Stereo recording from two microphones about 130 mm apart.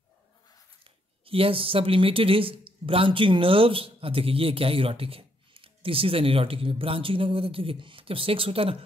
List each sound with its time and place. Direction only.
1.2 s speech: 45° right (ahead or behind)